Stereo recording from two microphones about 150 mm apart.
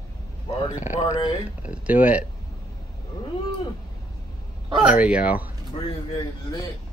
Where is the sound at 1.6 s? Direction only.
10° right (ahead or behind).